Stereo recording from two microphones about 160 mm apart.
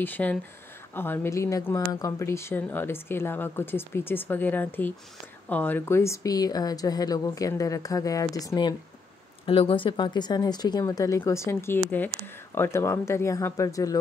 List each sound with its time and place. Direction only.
0.0 s speech: 10° left (ahead or behind)